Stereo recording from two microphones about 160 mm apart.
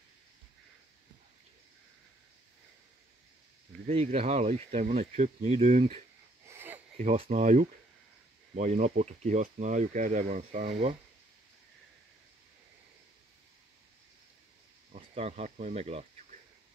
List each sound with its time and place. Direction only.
3.8 s speech: 40° right (ahead or behind)
6.5 s sniff: 15° right (ahead or behind)
7.0 s speech: 45° right (ahead or behind)
14.9 s speech: 45° right (ahead or behind)